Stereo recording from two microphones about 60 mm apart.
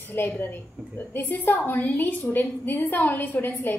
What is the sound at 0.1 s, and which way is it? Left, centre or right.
A woman's voice, left.